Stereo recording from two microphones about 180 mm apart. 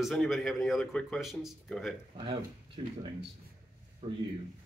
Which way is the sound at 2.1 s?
30° right (ahead or behind).